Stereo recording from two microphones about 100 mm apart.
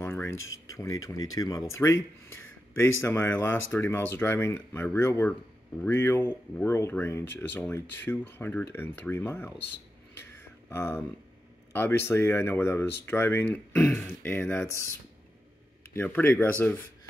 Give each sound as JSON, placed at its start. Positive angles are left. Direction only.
{"t": 0.0, "sound": "speech", "side_deg": 25}
{"t": 10.1, "sound": "a sound", "side_deg": 25}
{"t": 11.7, "sound": "speech", "side_deg": 25}
{"t": 15.9, "sound": "speech", "side_deg": 20}